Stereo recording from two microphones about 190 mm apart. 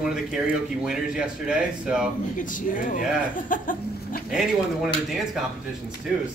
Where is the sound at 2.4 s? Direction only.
45° left (ahead or behind).